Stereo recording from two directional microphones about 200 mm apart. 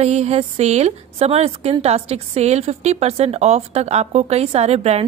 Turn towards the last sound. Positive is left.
turn(degrees=-30)  # may be behind; listen again after turning